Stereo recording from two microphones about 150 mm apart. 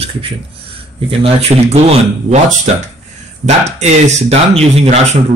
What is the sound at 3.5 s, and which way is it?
Speech, 50° right (ahead or behind).